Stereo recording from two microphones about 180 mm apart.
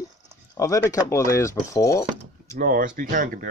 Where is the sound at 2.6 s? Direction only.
50° right (ahead or behind).